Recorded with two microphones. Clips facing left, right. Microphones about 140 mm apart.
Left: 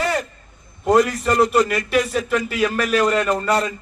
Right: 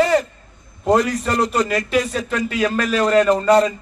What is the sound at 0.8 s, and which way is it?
Speech, 5° left (ahead or behind).